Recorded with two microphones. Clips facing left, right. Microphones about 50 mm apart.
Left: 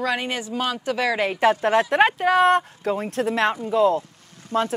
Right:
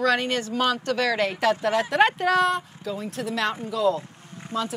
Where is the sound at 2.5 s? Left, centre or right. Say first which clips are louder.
Left 7 dB; left.